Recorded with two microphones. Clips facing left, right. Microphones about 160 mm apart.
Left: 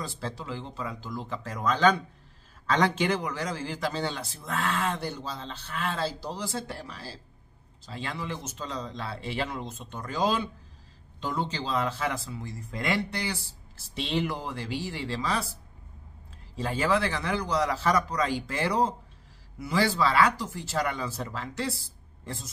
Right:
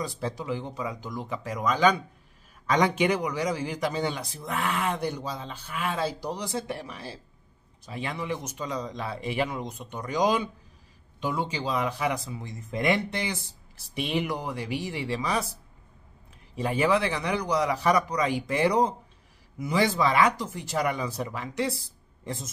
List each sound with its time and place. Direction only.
0.0 s a man's voice: 15° right (ahead or behind)
16.5 s a man's voice: 15° right (ahead or behind)